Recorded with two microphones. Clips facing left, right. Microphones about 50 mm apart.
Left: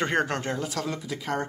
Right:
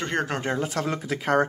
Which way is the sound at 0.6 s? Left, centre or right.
Right.